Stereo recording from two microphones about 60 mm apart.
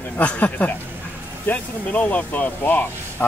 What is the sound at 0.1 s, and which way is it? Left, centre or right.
Speech, left.